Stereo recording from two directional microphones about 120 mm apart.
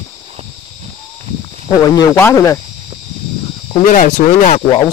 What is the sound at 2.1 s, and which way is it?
Speech, 20° left (ahead or behind).